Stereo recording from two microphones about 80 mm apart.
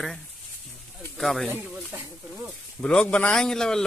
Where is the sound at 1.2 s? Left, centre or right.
Centre.